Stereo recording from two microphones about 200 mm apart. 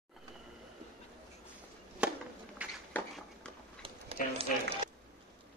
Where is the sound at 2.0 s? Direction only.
5° right (ahead or behind).